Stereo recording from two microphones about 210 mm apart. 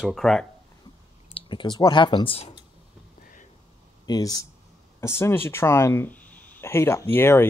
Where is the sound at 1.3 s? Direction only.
20° left (ahead or behind).